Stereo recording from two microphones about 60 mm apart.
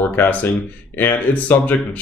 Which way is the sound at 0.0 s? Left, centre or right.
Left.